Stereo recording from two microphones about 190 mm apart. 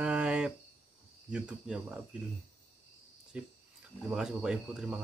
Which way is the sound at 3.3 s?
5° right (ahead or behind).